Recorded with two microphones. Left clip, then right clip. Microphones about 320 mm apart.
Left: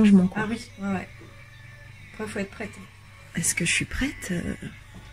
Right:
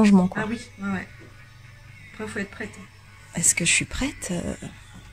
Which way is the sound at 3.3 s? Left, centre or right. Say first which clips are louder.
Right 3 dB; centre.